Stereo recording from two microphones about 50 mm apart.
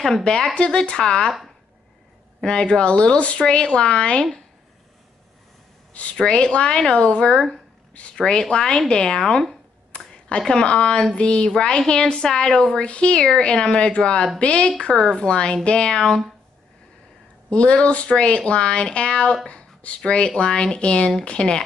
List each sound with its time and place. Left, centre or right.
0.0 s speech: centre
2.4 s speech: centre
6.1 s speech: centre
14.8 s speech: centre
17.5 s speech: left
19.4 s a sound: left
20.1 s speech: centre